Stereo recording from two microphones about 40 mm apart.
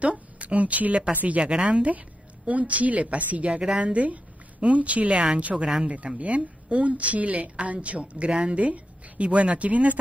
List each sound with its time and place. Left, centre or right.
0.0 s a woman's voice: right